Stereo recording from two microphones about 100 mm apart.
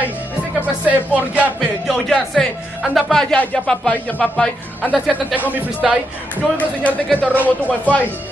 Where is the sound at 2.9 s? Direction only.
5° left (ahead or behind).